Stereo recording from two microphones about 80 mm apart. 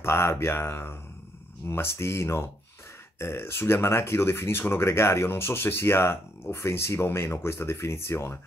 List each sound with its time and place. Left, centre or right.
0.0 s speech: left